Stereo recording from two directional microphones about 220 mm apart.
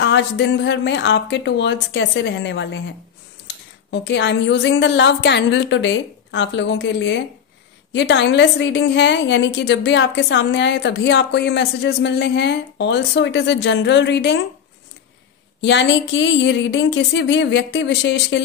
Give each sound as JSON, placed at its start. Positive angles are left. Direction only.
{"t": 0.0, "sound": "a woman's voice", "side_deg": 55}
{"t": 15.6, "sound": "a woman's voice", "side_deg": 55}